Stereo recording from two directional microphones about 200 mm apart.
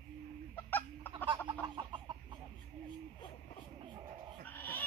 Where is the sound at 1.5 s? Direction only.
20° right (ahead or behind).